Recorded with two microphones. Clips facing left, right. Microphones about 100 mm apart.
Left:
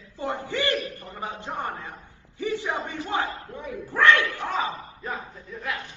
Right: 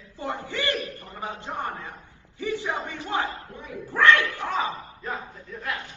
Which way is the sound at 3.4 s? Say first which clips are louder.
Left 5 dB; 55° left (ahead or behind).